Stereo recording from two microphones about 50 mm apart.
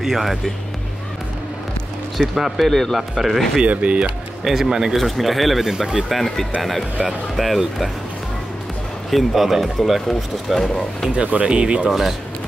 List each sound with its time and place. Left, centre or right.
0.0 s speech: centre
2.1 s speech: centre
3.6 s speech: right
4.5 s a man's voice: centre
9.1 s speech: centre
11.4 s speech: centre
11.9 s speech: centre